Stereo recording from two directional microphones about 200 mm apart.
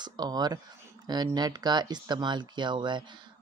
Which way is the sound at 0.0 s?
20° right (ahead or behind).